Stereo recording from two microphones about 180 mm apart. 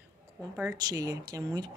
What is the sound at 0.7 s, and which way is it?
Speech, 20° right (ahead or behind).